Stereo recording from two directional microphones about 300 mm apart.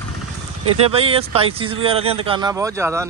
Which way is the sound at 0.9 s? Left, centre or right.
Centre.